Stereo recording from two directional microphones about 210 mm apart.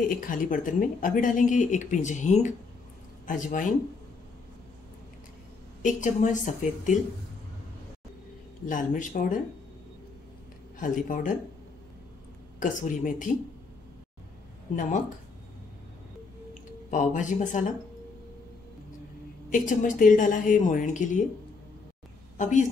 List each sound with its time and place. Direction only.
0.1 s speech: 40° left (ahead or behind)
5.8 s speech: 35° left (ahead or behind)
8.6 s speech: 40° left (ahead or behind)
10.8 s speech: 40° left (ahead or behind)
12.5 s speech: 40° left (ahead or behind)
14.8 s speech: 35° left (ahead or behind)
16.9 s speech: 35° left (ahead or behind)
19.5 s speech: 35° left (ahead or behind)
22.4 s speech: 35° left (ahead or behind)